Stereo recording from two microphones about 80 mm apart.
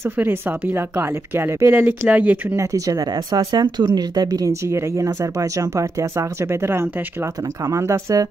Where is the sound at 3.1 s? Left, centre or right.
Right.